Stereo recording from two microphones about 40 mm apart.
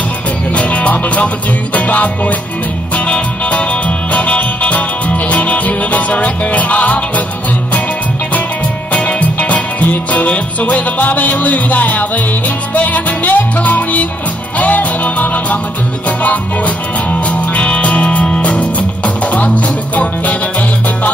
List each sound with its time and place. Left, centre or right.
0.6 s music: left
4.1 s music: left
8.9 s music: left
17.1 s music: left